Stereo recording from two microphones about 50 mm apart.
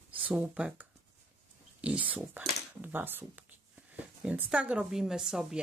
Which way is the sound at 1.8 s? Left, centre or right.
Right.